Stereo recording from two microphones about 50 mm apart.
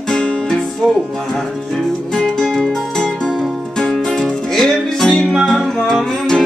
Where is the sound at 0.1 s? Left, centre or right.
Centre.